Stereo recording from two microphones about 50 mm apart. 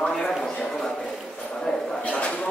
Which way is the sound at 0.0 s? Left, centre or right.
Centre.